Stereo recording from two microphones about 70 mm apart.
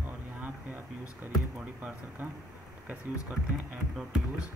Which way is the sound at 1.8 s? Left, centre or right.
Right.